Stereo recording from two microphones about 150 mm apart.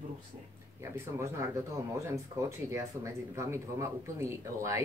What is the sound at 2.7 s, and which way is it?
Speech, 20° right (ahead or behind).